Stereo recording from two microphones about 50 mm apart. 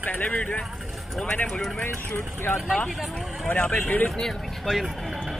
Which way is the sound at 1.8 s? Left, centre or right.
Left.